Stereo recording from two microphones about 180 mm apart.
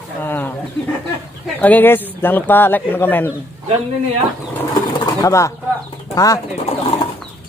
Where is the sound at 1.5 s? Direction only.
10° left (ahead or behind).